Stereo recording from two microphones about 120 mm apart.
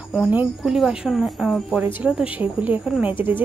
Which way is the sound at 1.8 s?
15° right (ahead or behind).